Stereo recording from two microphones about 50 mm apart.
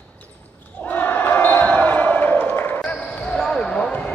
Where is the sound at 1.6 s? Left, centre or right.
Left.